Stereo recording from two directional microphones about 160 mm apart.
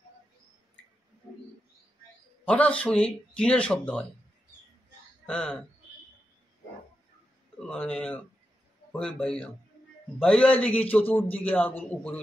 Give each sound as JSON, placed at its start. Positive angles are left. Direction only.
{"t": 2.4, "sound": "speech", "side_deg": 5}
{"t": 5.2, "sound": "speech", "side_deg": 5}
{"t": 7.5, "sound": "a man's voice", "side_deg": 5}